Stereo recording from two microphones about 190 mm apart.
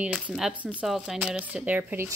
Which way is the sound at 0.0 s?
5° right (ahead or behind).